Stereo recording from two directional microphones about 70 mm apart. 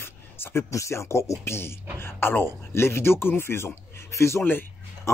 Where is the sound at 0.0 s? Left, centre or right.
Left.